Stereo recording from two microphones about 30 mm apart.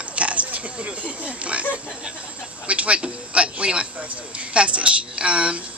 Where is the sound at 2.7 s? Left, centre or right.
Right.